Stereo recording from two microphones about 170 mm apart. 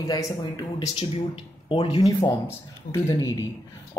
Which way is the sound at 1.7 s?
30° left (ahead or behind).